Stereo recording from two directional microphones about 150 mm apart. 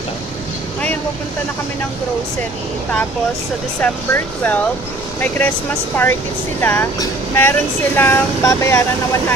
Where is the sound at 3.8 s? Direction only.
10° left (ahead or behind).